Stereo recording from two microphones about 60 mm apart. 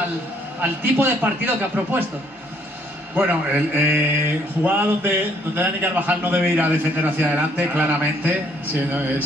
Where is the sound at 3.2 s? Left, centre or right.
Right.